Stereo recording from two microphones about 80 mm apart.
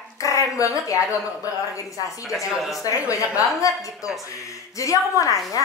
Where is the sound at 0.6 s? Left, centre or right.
Left.